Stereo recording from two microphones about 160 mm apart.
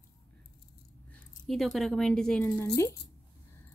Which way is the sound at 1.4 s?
Centre (ahead or behind).